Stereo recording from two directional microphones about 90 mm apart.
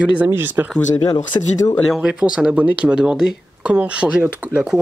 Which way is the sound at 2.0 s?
10° right (ahead or behind).